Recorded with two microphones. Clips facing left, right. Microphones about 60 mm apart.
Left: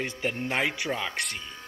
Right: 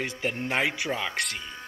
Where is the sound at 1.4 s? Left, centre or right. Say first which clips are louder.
Right 2 dB; right.